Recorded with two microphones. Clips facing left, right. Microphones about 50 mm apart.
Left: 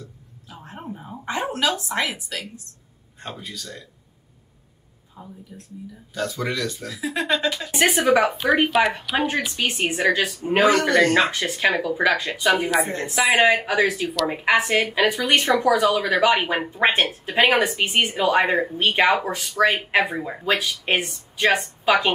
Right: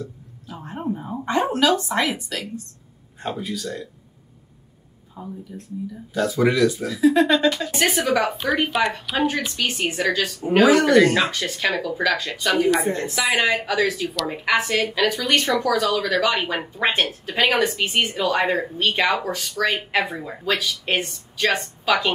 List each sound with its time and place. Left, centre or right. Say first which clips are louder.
0.0 s a sound: right 8 dB; centre
1.2 s speech: right 4 dB; centre
5.2 s speech: right 6 dB; centre
7.7 s speech: left 2 dB; centre
9.1 s speech: even; centre
10.6 s speech: right 3 dB; centre
11.1 s speech: left 2 dB; centre
12.4 s speech: right 1 dB; centre
13.0 s speech: left 3 dB; centre
17.3 s speech: left 2 dB; centre